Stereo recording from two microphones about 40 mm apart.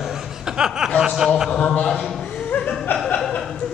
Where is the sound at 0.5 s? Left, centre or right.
Centre.